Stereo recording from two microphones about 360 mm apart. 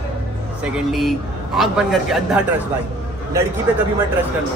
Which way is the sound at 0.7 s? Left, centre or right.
Centre.